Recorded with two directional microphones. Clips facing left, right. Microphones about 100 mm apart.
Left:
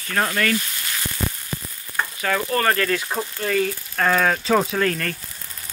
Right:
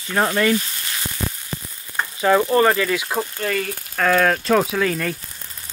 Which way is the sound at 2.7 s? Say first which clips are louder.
Right 2 dB; 5° right (ahead or behind).